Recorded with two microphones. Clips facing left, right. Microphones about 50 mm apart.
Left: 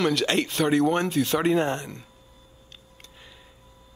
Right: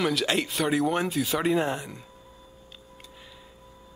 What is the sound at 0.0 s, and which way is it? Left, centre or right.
Speech, centre.